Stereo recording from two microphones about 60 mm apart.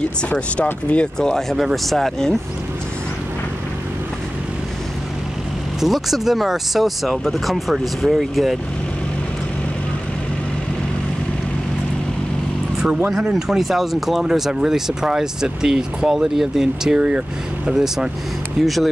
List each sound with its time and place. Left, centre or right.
0.7 s speech: left
1.2 s speech: centre
5.8 s speech: centre
13.3 s speech: centre